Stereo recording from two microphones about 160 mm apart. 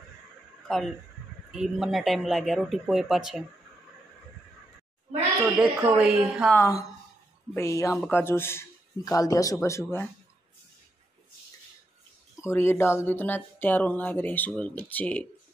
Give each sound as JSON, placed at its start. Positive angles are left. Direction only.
{"t": 0.7, "sound": "speech", "side_deg": 5}
{"t": 5.4, "sound": "speech", "side_deg": -10}
{"t": 6.5, "sound": "speech", "side_deg": 20}
{"t": 12.4, "sound": "speech", "side_deg": 15}